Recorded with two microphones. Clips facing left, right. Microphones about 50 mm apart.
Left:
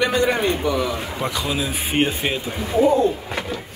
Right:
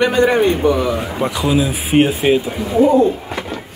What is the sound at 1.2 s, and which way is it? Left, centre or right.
Speech, centre.